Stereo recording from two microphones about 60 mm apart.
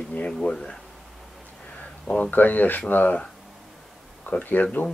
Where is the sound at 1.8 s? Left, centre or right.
Left.